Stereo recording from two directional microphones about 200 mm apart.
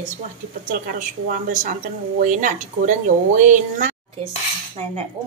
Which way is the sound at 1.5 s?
40° right (ahead or behind).